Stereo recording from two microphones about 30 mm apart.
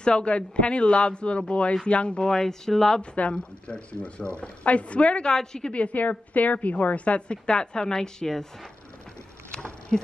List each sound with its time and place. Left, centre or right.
0.0 s speech: left
2.2 s speech: left
3.0 s speech: left
5.3 s speech: left
5.7 s a woman's voice: left
7.2 s a woman's voice: left; by 8.5 s centre
9.9 s speech: centre